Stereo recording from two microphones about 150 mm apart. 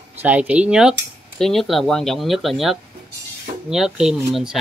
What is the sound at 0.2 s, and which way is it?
Speech, 10° right (ahead or behind).